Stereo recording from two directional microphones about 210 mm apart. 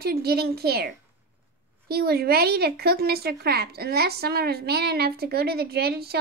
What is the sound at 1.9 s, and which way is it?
A child's voice, 50° right (ahead or behind).